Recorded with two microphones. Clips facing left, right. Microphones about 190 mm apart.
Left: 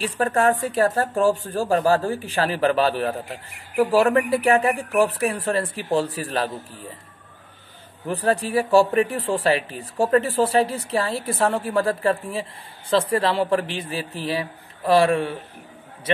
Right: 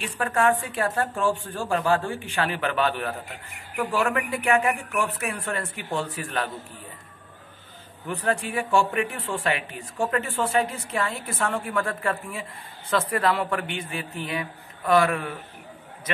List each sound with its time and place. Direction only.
0.0 s speech: 40° left (ahead or behind)
8.1 s speech: 35° left (ahead or behind)